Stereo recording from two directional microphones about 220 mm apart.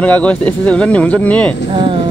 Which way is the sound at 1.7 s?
25° right (ahead or behind).